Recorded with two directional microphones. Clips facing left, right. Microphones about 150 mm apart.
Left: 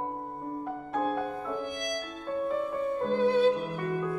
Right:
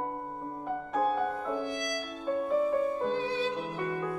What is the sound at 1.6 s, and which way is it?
Music, 55° left (ahead or behind).